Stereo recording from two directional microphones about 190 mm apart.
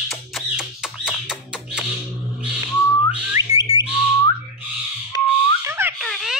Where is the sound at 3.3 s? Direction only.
20° right (ahead or behind).